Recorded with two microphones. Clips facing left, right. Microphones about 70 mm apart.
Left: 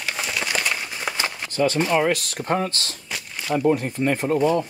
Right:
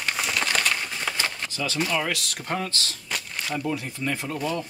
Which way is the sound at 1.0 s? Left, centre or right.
Centre.